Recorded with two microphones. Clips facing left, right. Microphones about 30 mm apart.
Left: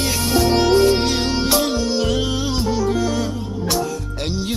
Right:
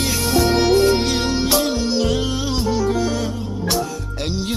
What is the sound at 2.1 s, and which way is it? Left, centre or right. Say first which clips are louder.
Music: even; centre.